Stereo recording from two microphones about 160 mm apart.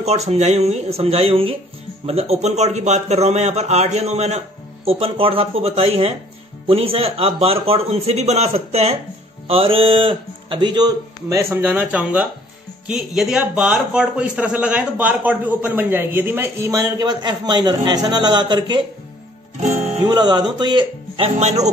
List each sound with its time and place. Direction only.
0.0 s a man's voice: 40° right (ahead or behind)
19.6 s speech: 45° right (ahead or behind)
20.1 s a man's voice: 25° right (ahead or behind)
21.4 s a man's voice: 45° right (ahead or behind)